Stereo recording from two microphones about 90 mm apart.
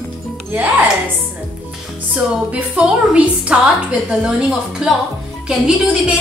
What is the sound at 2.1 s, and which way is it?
A woman's voice, 15° right (ahead or behind).